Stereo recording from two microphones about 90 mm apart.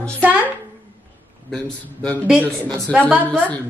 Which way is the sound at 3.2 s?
15° left (ahead or behind).